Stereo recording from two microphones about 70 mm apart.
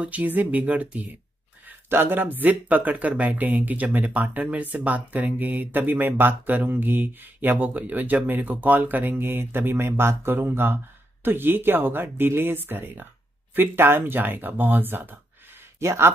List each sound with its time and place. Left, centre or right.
0.0 s speech: right
15.8 s speech: right